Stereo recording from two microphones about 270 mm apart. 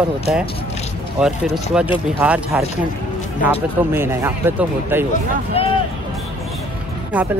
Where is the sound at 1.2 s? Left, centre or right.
Centre.